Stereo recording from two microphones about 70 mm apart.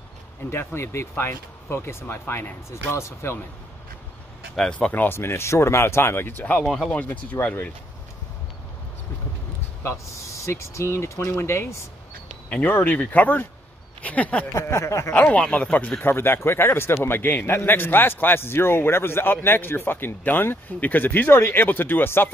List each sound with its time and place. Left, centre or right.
0.5 s a man's voice: left
4.6 s speech: centre
4.9 s a man's voice: left
6.6 s speech: centre
6.9 s speech: left
9.8 s a man's voice: left
12.4 s speech: left
14.5 s a sound: left
15.1 s speech: centre
16.0 s a man's voice: left